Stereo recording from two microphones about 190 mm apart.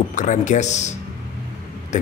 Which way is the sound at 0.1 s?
40° left (ahead or behind).